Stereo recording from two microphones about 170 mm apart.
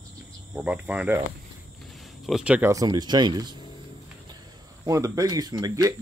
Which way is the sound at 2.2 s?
5° right (ahead or behind).